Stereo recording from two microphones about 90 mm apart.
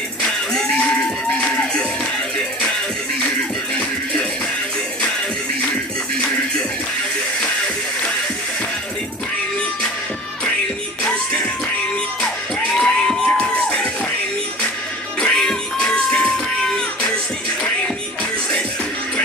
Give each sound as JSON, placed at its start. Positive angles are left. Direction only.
{"t": 0.2, "sound": "music", "side_deg": 10}
{"t": 12.7, "sound": "music", "side_deg": 5}
{"t": 15.1, "sound": "music", "side_deg": 10}